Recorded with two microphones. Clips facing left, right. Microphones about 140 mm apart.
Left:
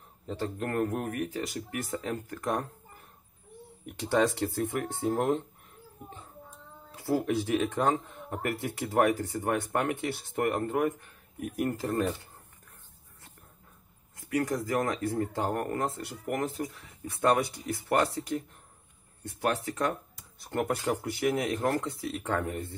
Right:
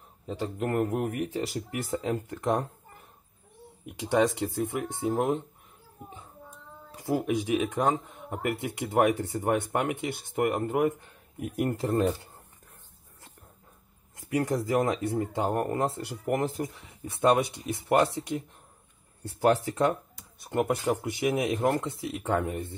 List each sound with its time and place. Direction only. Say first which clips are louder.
0.3 s speech: right 3 dB; 15° right (ahead or behind)
3.9 s speech: right 2 dB; 15° right (ahead or behind)
7.1 s speech: right 1 dB; 15° right (ahead or behind)
9.2 s speech: right 3 dB; 25° right (ahead or behind)
14.3 s speech: right 3 dB; 25° right (ahead or behind)
20.4 s speech: right 3 dB; 20° right (ahead or behind)